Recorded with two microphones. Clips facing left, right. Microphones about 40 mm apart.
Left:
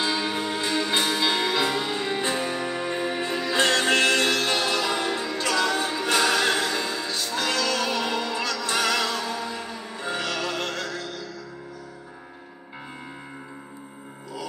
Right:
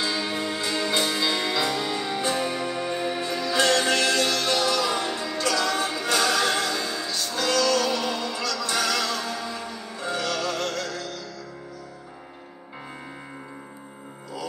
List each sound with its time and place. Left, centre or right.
0.0 s music: left